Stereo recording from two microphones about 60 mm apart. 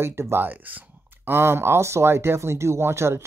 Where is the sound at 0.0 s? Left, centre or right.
Right.